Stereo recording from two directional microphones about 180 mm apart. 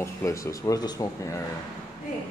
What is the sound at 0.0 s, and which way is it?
Speech, 15° left (ahead or behind).